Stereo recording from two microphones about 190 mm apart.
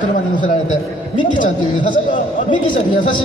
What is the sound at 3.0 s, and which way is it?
Speech, 25° left (ahead or behind).